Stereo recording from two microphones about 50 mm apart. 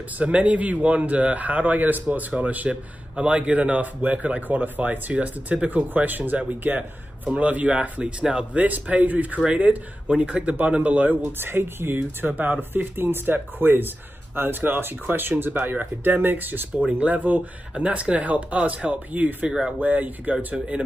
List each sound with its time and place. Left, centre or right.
0.2 s a man's voice: right
11.3 s a man's voice: right
16.7 s a man's voice: right
20.5 s speech: right